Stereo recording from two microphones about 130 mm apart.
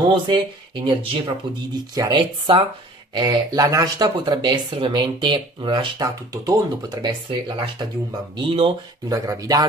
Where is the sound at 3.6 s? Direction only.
25° right (ahead or behind).